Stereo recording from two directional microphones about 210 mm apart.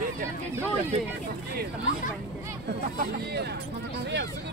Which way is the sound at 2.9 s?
50° right (ahead or behind).